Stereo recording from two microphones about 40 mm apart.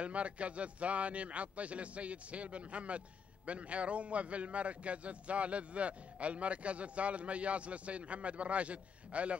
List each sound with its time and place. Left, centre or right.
0.0 s a man's voice: right